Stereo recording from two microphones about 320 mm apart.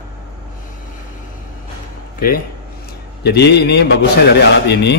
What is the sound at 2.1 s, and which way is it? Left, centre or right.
Speech, left.